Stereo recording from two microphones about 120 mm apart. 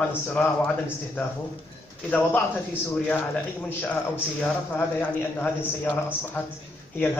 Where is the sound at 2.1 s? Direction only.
15° left (ahead or behind).